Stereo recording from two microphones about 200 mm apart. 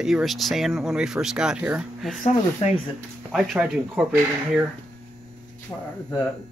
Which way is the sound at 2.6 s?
30° left (ahead or behind).